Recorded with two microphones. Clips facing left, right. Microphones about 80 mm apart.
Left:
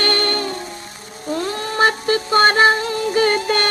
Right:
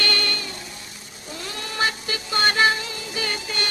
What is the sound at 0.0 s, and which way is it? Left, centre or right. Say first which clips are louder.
Music: left 7 dB; left.